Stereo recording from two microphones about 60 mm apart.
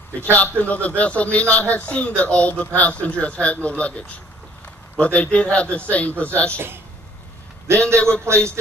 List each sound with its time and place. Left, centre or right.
0.4 s a man's voice: left
4.9 s a man's voice: left
6.5 s a man's voice: right